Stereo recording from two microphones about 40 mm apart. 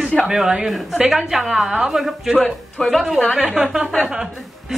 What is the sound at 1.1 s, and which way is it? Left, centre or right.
Speech, centre.